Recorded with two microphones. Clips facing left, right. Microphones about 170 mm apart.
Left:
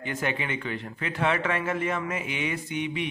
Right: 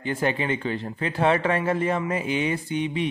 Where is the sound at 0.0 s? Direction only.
30° right (ahead or behind).